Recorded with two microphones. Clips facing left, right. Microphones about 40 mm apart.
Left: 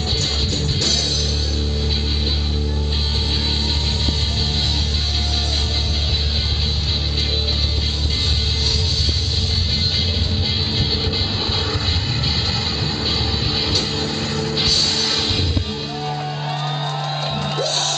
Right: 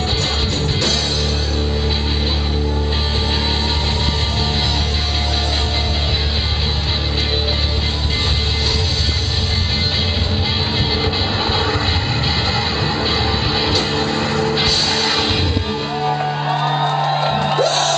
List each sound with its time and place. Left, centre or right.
12.8 s music: centre
16.0 s music: right
17.0 s music: centre
17.3 s music: right
17.6 s music: centre